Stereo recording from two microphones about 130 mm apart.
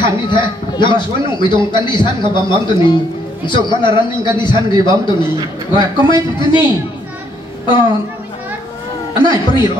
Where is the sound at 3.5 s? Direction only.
35° left (ahead or behind).